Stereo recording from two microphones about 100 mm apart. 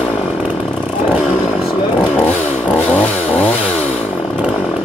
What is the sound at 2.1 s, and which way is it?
Chainsaw, 15° left (ahead or behind).